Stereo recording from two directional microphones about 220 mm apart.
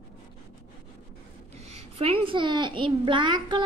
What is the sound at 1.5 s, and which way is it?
A child's voice, 30° right (ahead or behind).